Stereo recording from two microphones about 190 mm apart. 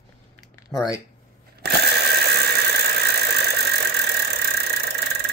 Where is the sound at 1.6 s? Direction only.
60° right (ahead or behind).